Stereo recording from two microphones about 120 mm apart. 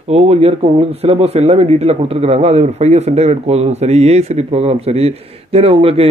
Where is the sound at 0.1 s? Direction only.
60° right (ahead or behind).